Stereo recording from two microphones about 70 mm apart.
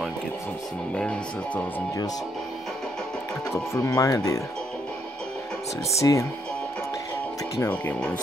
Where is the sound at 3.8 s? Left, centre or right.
Left.